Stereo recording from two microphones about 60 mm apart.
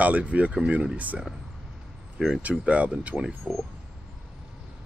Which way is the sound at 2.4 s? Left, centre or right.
Right.